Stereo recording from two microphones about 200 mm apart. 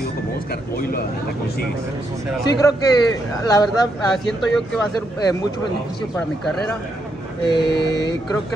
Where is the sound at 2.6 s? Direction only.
15° left (ahead or behind).